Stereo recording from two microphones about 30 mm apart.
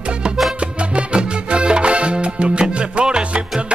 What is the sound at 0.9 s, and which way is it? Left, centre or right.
Music, right.